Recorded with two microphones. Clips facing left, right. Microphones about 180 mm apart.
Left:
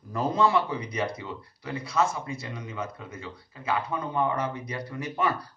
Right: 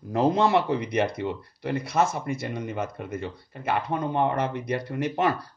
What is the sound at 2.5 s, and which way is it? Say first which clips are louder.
A man's voice: right 5 dB; 60° right (ahead or behind).